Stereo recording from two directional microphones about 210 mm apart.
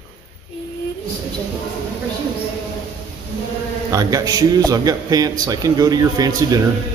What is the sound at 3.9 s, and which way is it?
A man's voice, 15° right (ahead or behind).